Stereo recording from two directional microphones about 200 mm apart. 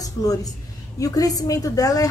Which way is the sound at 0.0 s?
15° left (ahead or behind).